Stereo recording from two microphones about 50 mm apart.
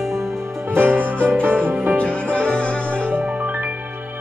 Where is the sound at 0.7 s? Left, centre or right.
Right.